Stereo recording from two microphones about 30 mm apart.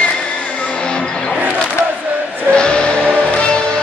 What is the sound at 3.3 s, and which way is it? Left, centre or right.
Music, left.